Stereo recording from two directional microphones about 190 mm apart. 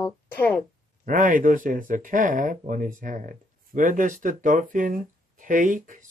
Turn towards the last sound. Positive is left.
turn(degrees=-45)  # may be behind; listen again after turning